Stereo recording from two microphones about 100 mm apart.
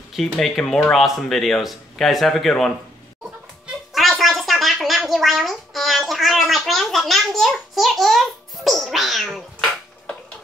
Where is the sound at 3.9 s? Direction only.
Centre (ahead or behind).